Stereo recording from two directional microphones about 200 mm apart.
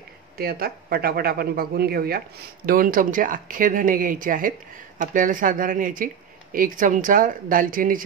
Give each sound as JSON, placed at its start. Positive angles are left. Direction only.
{"t": 0.4, "sound": "speech", "side_deg": -50}